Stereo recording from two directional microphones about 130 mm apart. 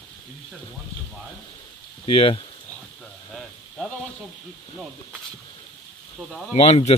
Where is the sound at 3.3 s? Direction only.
Centre (ahead or behind).